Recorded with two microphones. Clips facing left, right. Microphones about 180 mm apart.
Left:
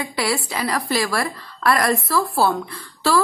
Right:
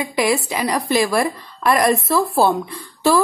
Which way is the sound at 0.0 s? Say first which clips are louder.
Right 5 dB; 15° right (ahead or behind).